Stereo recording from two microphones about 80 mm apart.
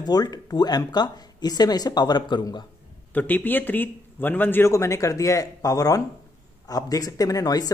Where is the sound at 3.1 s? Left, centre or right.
Left.